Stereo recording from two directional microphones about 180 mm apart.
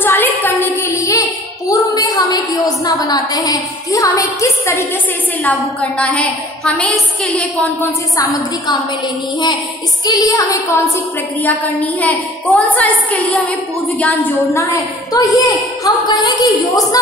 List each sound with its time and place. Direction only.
0.0 s a sound: 10° left (ahead or behind)
1.7 s a woman's voice: 20° left (ahead or behind)
8.2 s a woman's voice: 20° left (ahead or behind)
10.0 s a woman's voice: 20° left (ahead or behind)